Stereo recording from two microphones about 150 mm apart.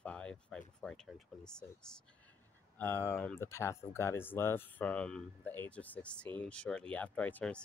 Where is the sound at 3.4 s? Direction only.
20° left (ahead or behind).